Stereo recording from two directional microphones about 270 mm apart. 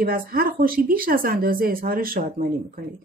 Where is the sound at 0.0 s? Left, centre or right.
Right.